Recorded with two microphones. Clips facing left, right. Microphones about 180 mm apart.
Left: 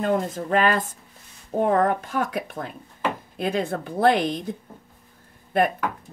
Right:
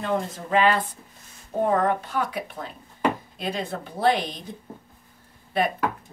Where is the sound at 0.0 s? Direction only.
50° left (ahead or behind).